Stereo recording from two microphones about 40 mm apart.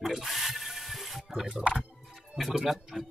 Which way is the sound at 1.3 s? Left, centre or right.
Centre.